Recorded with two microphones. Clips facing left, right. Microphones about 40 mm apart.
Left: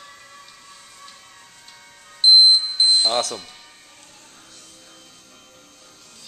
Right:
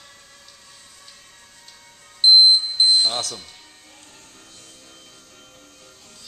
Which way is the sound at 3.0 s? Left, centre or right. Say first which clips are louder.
Left 3 dB; centre.